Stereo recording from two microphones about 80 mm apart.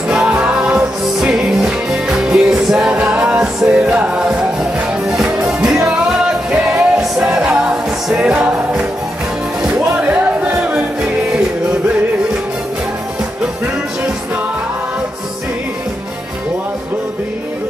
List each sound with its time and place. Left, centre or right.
0.1 s music: centre
9.9 s music: centre